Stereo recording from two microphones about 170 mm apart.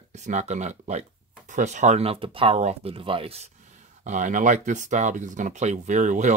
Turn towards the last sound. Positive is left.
turn(degrees=-45)  # may be behind; listen again after turning